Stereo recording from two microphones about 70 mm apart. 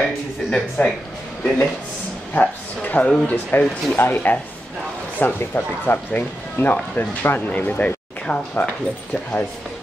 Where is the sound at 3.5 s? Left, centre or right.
Left.